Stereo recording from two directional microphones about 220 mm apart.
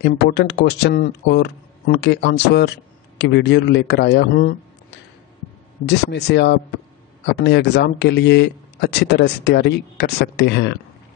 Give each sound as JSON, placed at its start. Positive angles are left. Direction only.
{"t": 0.0, "sound": "speech", "side_deg": 50}